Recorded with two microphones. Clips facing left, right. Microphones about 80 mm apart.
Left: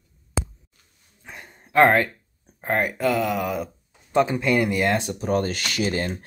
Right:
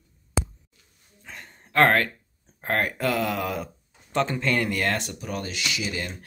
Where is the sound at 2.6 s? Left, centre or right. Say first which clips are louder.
Left 3 dB; centre.